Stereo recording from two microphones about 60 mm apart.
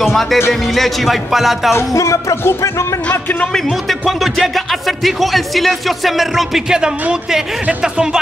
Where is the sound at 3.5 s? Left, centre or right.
Centre.